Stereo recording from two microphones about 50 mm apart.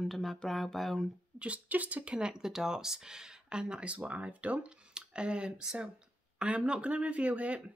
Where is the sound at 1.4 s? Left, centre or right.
Right.